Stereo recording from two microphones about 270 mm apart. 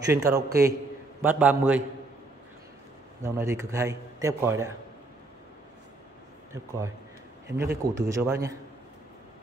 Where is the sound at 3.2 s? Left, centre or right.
Centre.